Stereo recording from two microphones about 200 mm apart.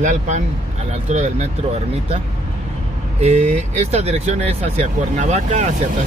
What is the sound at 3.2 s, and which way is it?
Speech, 35° right (ahead or behind).